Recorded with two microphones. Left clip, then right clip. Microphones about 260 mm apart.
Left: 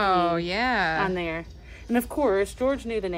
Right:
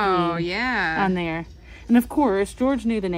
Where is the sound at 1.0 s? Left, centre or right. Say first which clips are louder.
Right 3 dB; right.